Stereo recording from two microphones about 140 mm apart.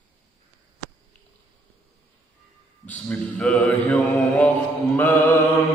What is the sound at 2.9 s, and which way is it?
Mantra, 5° left (ahead or behind).